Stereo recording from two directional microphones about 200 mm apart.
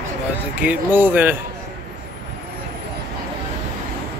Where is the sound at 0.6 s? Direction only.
10° right (ahead or behind).